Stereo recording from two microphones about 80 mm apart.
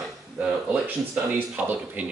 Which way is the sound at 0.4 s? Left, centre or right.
Centre.